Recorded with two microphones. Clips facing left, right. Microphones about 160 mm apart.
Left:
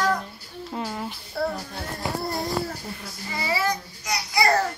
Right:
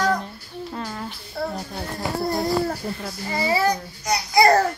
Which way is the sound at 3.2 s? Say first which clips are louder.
Right 5 dB; 35° right (ahead or behind).